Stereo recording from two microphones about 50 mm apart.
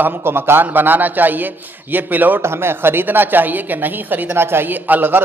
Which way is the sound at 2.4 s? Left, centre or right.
Right.